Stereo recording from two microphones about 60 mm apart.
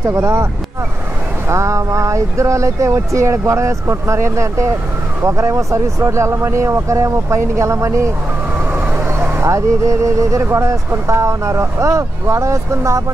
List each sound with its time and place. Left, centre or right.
0.0 s speech: right
1.5 s speech: right
9.2 s speech: right